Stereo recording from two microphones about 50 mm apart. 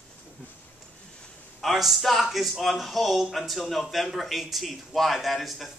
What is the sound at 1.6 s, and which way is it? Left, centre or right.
A man's voice, centre.